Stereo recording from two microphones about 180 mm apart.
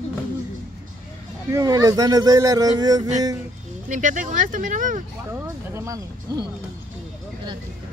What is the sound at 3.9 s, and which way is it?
Speech, 45° right (ahead or behind).